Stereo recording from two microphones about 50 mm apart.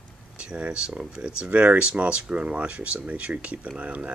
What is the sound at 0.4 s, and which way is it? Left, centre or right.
Speech, right.